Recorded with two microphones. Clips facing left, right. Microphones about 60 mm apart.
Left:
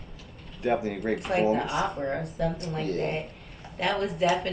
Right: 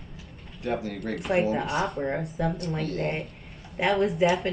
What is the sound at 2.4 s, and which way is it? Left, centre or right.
Speech, centre.